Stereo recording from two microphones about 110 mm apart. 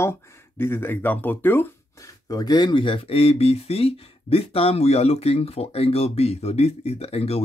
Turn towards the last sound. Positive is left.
turn(degrees=65)  # may be behind; listen again after turning